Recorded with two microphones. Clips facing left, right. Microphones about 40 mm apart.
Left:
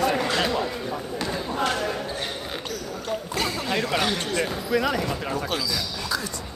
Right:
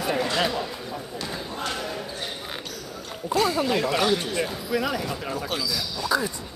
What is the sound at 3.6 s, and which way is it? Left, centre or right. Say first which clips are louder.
Speech: right 1 dB; centre.